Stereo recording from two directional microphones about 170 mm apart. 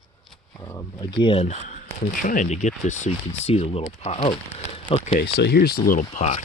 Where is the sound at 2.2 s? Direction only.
50° left (ahead or behind); by 4.4 s 35° left (ahead or behind).